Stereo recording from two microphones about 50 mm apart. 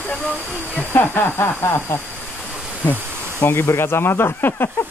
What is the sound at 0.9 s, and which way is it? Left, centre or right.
Speech, left.